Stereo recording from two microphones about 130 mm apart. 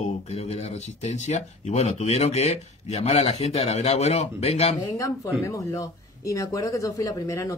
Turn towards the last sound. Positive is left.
turn(degrees=25)  # may be behind; listen again after turning